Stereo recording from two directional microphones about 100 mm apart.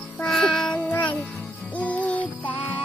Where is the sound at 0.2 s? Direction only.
10° left (ahead or behind).